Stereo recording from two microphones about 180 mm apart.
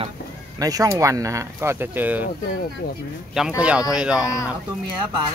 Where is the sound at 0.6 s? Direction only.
20° right (ahead or behind).